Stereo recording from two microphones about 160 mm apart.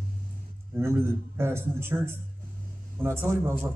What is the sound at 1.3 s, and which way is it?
A man's voice, 15° right (ahead or behind).